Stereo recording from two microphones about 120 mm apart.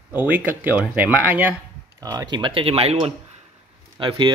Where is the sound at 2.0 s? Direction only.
35° right (ahead or behind); by 2.9 s 55° right (ahead or behind).